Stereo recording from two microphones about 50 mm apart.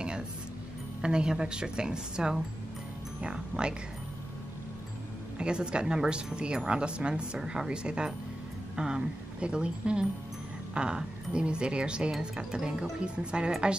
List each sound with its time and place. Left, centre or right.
1.0 s a woman's voice: centre
5.4 s a woman's voice: centre